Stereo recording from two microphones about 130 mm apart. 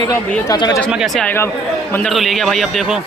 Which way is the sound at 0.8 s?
5° left (ahead or behind).